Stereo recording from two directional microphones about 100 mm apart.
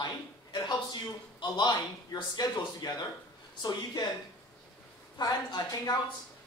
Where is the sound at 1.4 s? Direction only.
50° left (ahead or behind).